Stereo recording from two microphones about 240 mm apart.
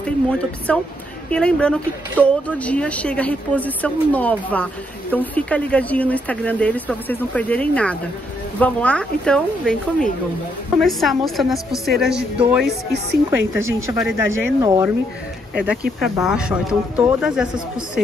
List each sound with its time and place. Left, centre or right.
0.0 s speech: centre
12.6 s a woman's voice: right
13.8 s speech: centre